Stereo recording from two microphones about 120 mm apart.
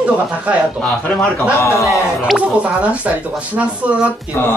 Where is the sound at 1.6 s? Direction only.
25° left (ahead or behind).